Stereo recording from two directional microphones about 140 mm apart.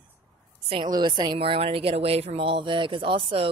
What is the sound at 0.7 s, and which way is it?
A woman's voice, 35° right (ahead or behind).